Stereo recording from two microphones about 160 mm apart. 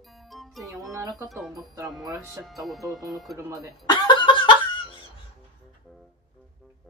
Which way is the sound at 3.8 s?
30° left (ahead or behind).